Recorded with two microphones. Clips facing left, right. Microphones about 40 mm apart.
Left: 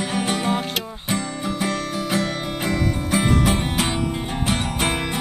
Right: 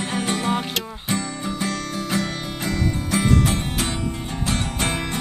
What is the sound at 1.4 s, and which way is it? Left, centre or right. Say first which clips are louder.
Music: left 2 dB; centre.